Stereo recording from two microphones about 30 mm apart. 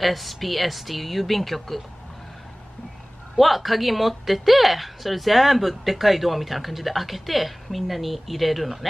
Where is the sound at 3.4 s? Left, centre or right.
Centre.